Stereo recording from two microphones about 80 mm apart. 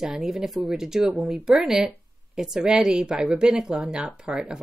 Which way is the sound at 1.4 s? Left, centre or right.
Centre.